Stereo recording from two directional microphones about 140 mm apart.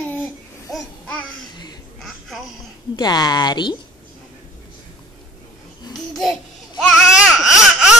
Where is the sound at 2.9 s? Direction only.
30° left (ahead or behind).